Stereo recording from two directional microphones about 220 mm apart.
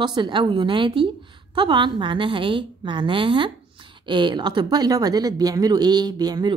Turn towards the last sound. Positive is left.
turn(degrees=-20)  # may be behind; listen again after turning